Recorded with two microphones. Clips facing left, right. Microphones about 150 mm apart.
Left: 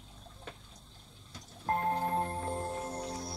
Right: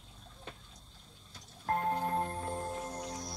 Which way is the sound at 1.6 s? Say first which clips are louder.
Left 1 dB; 25° left (ahead or behind).